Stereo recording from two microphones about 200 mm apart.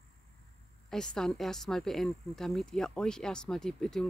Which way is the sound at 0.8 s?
5° left (ahead or behind).